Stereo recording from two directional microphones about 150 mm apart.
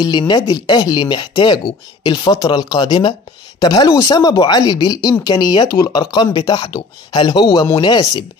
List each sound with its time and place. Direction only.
0.0 s speech: 30° left (ahead or behind)